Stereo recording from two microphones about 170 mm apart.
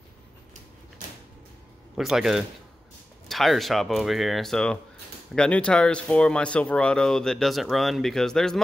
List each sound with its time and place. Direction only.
2.0 s speech: centre (ahead or behind)